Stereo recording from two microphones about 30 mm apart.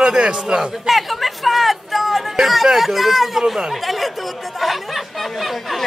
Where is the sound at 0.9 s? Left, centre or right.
Centre.